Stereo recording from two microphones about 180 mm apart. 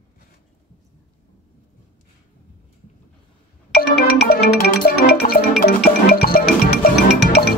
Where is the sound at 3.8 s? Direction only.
65° left (ahead or behind).